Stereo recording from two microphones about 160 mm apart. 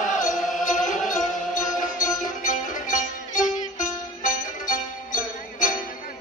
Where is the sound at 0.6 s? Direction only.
55° left (ahead or behind).